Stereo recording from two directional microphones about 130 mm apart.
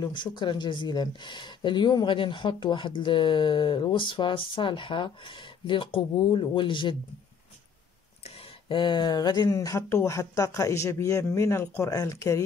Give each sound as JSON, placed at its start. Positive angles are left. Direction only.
{"t": 0.0, "sound": "speech", "side_deg": 35}
{"t": 8.6, "sound": "speech", "side_deg": 35}